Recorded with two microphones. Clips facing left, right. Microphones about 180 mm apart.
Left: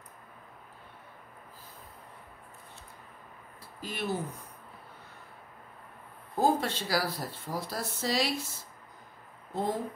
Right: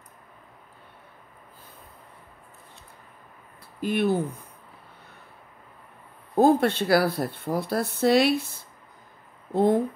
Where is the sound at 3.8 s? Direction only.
60° right (ahead or behind).